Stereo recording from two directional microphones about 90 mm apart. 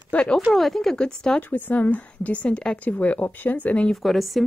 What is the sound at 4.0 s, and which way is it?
Speech, centre (ahead or behind).